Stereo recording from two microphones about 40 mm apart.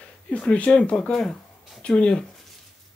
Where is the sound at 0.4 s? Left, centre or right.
Left.